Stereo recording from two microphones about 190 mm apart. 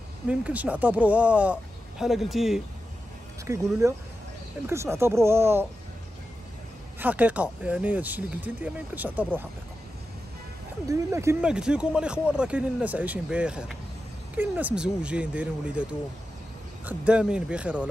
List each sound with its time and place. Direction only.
0.3 s speech: 5° right (ahead or behind)
3.4 s speech: 15° right (ahead or behind)
7.0 s speech: 10° right (ahead or behind)
10.9 s speech: 15° right (ahead or behind)